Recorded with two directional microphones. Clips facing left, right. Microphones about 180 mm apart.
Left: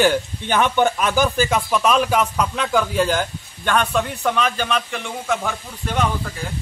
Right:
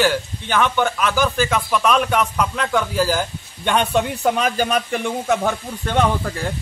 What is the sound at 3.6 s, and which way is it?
A man's voice, 20° right (ahead or behind).